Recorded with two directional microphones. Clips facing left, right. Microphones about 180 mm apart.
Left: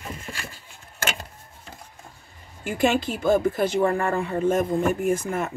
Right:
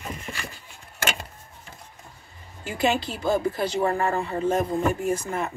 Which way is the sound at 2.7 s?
50° left (ahead or behind).